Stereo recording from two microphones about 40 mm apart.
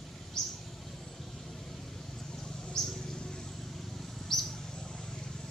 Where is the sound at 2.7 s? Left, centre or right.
Centre.